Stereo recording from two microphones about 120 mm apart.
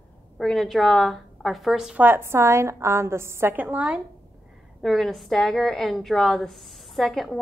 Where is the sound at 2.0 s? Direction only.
20° right (ahead or behind).